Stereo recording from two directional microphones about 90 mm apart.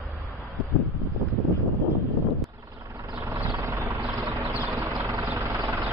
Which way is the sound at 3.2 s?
40° right (ahead or behind).